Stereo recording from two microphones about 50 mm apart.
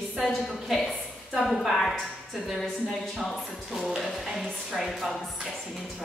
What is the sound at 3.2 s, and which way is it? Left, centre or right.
Speech, centre.